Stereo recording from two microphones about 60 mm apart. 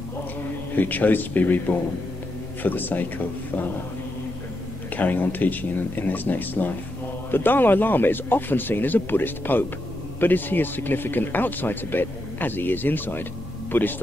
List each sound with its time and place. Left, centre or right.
0.7 s speech: left
2.6 s speech: left
4.9 s speech: left